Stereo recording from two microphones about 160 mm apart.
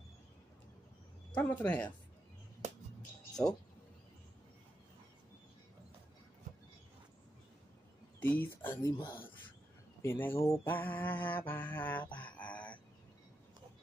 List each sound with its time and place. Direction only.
1.3 s mantra: 10° left (ahead or behind)
3.4 s mantra: 10° left (ahead or behind)
8.2 s mantra: 10° left (ahead or behind)
8.9 s speech: 25° left (ahead or behind)
10.0 s mantra: 15° left (ahead or behind)